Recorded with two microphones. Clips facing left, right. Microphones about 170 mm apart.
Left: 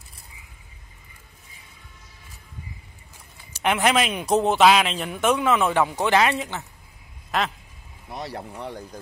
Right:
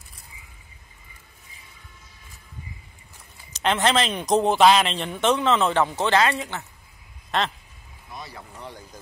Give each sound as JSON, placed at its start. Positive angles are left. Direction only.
{"t": 3.5, "sound": "speech", "side_deg": 10}
{"t": 7.2, "sound": "speech", "side_deg": 5}
{"t": 8.1, "sound": "a sound", "side_deg": 75}
{"t": 8.5, "sound": "speech", "side_deg": 60}